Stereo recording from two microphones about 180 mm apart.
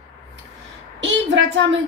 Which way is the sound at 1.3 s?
90° right.